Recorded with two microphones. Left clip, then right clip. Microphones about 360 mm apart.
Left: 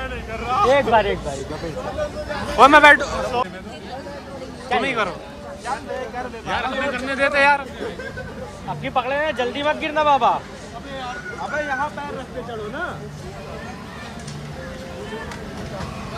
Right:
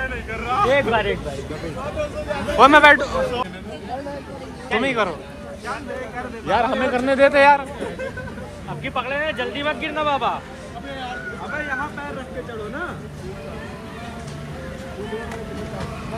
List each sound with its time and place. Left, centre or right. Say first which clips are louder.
0.5 s speech: left 2 dB; left
2.5 s a man's voice: left 1 dB; centre
4.8 s a man's voice: right 1 dB; centre
6.5 s a man's voice: right 4 dB; centre
8.8 s speech: left 2 dB; left
11.5 s boat: left 3 dB; left